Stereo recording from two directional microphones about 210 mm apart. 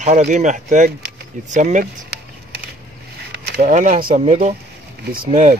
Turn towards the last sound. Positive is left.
turn(degrees=-35)  # may be behind; listen again after turning